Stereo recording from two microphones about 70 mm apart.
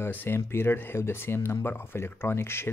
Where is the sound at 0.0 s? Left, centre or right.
Left.